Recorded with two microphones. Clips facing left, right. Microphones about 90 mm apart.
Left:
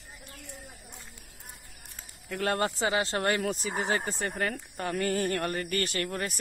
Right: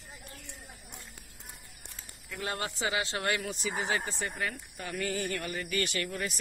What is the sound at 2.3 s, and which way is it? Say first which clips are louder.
Speech: left 7 dB; 55° left (ahead or behind).